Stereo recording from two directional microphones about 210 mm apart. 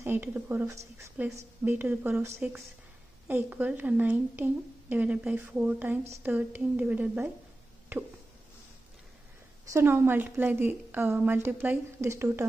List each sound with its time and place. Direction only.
0.0 s a woman's voice: 10° right (ahead or behind)
9.7 s a woman's voice: 10° right (ahead or behind)